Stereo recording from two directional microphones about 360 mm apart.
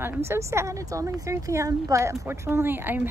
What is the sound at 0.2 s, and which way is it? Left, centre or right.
Speech, centre.